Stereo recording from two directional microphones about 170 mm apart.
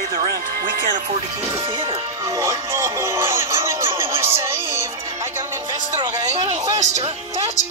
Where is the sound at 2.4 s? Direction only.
15° right (ahead or behind).